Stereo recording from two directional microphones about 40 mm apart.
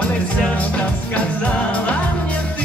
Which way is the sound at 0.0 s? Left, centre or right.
Left.